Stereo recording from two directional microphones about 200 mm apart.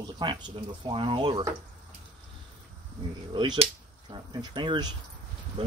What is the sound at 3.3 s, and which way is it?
Speech, 25° right (ahead or behind).